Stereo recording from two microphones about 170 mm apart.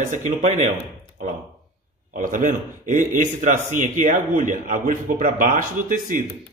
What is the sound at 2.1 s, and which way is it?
A man's voice, 50° right (ahead or behind).